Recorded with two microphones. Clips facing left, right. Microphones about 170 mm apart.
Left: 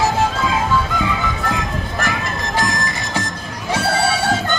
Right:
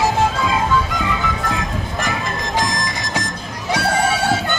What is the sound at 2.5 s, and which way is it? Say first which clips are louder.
Music: left 1 dB; 15° right (ahead or behind).